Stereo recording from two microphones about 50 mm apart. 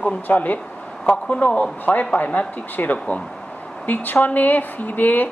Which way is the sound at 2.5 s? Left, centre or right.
Left.